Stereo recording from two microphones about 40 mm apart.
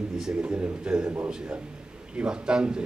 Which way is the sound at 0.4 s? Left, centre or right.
Right.